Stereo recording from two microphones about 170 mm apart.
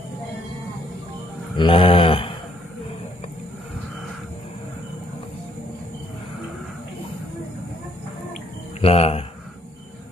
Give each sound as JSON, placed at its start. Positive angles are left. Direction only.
{"t": 1.6, "sound": "mantra", "side_deg": 30}
{"t": 8.8, "sound": "speech", "side_deg": 35}